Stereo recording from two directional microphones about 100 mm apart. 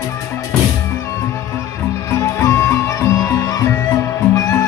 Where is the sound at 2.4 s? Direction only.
30° left (ahead or behind).